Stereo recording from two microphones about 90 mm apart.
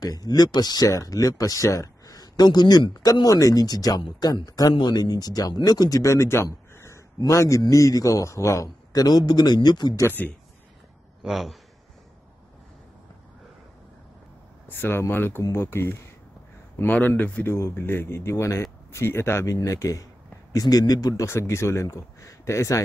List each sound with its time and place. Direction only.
0.0 s speech: 45° left (ahead or behind)
8.9 s speech: 50° left (ahead or behind)
10.0 s speech: 20° left (ahead or behind)
11.2 s a man's voice: centre (ahead or behind)
14.7 s speech: 25° left (ahead or behind)